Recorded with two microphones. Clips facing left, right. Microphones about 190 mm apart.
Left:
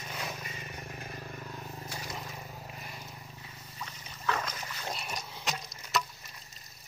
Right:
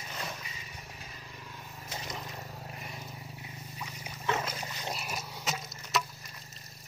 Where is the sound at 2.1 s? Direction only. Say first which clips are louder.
Even; centre (ahead or behind).